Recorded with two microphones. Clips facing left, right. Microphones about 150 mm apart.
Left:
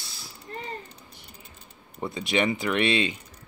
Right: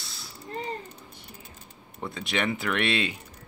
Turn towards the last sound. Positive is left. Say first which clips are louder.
# left 3 dB
turn(degrees=0)  # may be behind; listen again after turning